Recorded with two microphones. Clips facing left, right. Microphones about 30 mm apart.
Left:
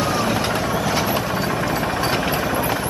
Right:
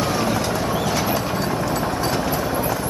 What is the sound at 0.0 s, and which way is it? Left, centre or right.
Vehicle, centre.